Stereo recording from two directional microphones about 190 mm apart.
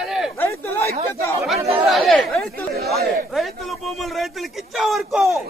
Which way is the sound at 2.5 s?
55° right (ahead or behind).